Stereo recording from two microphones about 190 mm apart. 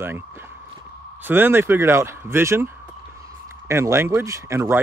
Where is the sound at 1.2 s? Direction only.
10° right (ahead or behind).